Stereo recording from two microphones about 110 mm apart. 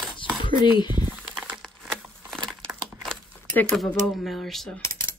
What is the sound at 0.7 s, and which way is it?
Speech, 40° left (ahead or behind).